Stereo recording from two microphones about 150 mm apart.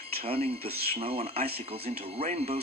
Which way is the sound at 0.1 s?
40° right (ahead or behind).